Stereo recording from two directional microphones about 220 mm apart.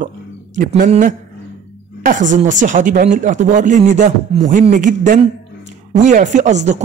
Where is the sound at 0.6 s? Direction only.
35° right (ahead or behind).